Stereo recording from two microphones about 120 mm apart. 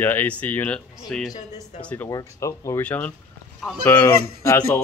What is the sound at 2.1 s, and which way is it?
Speech, 30° left (ahead or behind).